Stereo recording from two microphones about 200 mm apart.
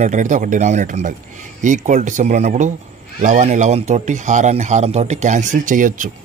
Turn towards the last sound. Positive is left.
turn(degrees=-40)  # may be behind; listen again after turning